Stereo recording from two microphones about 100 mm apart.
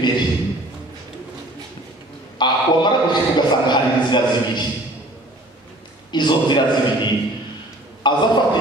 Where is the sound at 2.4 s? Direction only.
50° left (ahead or behind).